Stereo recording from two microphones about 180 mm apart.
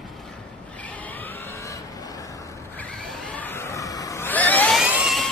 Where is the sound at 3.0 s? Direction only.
5° left (ahead or behind).